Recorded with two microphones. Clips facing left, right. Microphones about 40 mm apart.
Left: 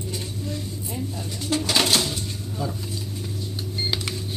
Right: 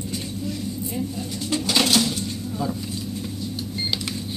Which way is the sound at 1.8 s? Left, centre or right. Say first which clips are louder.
Right 2 dB; left.